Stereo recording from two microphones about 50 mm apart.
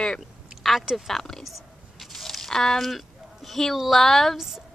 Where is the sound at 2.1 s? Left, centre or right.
Centre.